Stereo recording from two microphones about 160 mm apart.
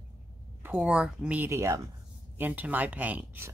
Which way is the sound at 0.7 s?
5° right (ahead or behind).